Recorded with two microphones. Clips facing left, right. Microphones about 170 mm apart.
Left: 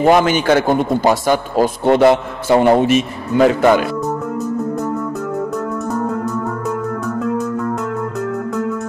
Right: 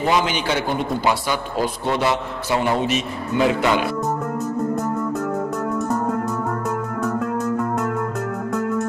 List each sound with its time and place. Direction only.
0.0 s a man's voice: 50° left (ahead or behind)
7.1 s music: 5° right (ahead or behind)